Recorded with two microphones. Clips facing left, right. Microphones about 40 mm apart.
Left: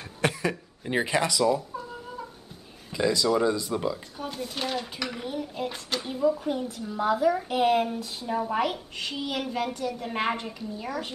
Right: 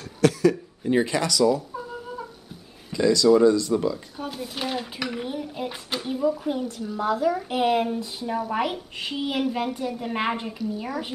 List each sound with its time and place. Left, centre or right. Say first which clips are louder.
0.2 s speech: right 7 dB; left
1.8 s chicken: right 3 dB; centre
2.9 s speech: right 6 dB; centre
4.2 s speech: right 1 dB; centre